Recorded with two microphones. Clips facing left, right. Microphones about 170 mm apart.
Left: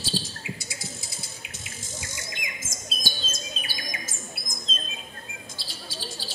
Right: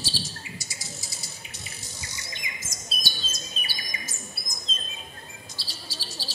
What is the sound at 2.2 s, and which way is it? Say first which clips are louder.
Chirp: left 3 dB; 50° left (ahead or behind).